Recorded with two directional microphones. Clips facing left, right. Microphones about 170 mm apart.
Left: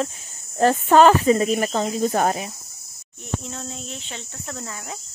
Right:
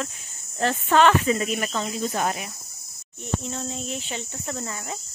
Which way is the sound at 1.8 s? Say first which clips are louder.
Left 6 dB; 45° left (ahead or behind).